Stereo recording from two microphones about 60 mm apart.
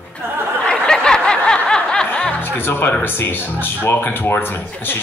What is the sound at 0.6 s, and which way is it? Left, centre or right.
Snicker, centre.